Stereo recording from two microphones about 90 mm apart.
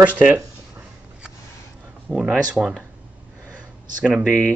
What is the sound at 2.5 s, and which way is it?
Mantra, 10° right (ahead or behind).